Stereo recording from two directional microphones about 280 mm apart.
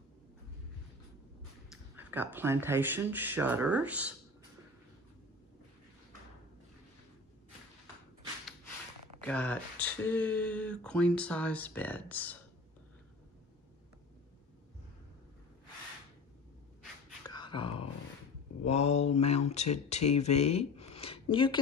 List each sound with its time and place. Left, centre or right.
1.7 s speech: centre
9.2 s speech: centre
17.3 s a sound: centre
18.7 s speech: left